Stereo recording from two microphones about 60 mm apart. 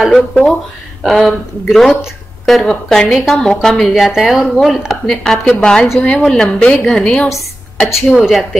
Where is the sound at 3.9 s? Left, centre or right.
Centre.